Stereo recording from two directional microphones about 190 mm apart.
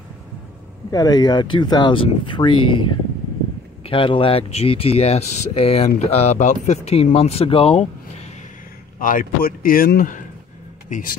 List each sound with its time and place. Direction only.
0.9 s speech: 20° left (ahead or behind)
9.0 s speech: 45° left (ahead or behind)